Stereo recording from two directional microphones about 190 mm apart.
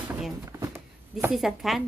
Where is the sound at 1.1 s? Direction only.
Centre (ahead or behind).